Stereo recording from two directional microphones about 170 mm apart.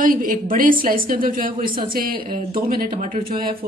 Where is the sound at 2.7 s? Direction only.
60° right (ahead or behind).